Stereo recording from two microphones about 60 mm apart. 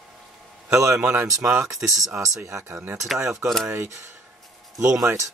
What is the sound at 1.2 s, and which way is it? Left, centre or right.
Speech, right.